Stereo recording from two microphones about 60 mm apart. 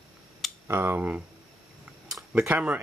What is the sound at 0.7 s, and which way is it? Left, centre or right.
Speech, right.